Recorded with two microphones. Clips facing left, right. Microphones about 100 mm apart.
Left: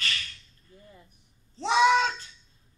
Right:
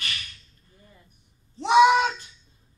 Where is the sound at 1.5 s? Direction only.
15° right (ahead or behind).